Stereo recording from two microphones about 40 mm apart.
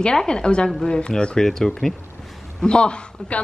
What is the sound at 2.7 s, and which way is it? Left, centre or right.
Speech, left.